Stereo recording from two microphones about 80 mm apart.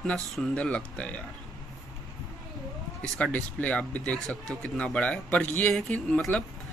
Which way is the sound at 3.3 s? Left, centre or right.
Centre.